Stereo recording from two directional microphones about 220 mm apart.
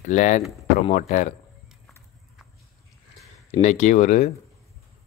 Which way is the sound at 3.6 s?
30° left (ahead or behind).